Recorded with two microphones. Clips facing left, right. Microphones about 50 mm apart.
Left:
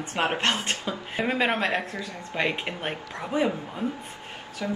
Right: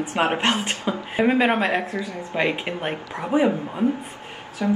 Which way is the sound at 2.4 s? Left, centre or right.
Centre.